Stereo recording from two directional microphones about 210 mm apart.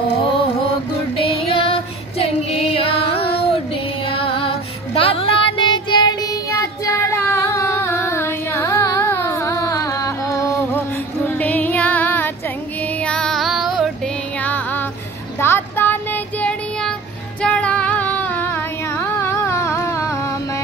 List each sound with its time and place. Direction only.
1.5 s music: 25° left (ahead or behind); by 12.3 s 10° left (ahead or behind)
13.0 s child singing: 5° left (ahead or behind)
14.4 s music: 10° left (ahead or behind)
15.4 s child singing: 10° left (ahead or behind)
17.4 s female singing: 5° left (ahead or behind)